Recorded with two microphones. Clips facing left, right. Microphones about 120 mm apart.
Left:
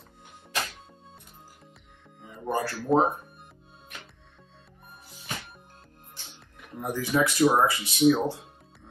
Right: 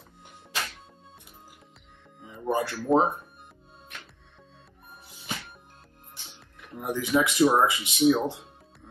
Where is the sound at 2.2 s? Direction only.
Centre (ahead or behind).